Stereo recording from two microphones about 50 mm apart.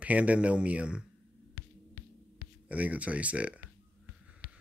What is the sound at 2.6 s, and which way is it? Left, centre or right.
Speech, right.